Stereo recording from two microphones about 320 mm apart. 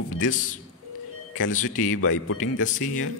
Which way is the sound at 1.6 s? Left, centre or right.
Left.